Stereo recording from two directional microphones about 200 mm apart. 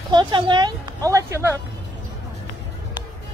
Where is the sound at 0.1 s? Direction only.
25° right (ahead or behind).